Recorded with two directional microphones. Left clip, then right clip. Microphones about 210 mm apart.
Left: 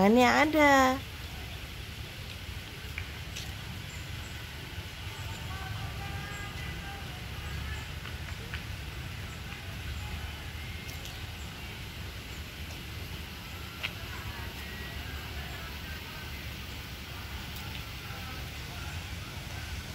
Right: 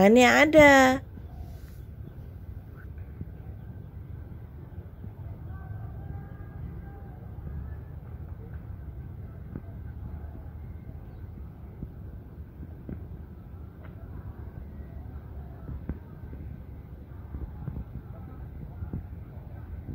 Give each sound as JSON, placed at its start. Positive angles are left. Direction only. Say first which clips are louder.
{"t": 0.0, "sound": "a child's voice", "louder": "right 5 dB", "side_deg": -15}